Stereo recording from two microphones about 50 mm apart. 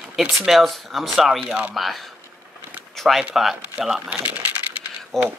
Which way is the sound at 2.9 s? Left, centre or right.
Centre.